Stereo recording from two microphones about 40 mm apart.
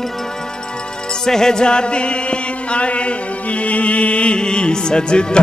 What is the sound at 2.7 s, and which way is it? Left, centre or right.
Chant, left.